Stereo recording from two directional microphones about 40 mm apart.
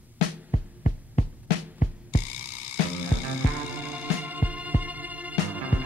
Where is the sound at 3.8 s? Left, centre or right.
Right.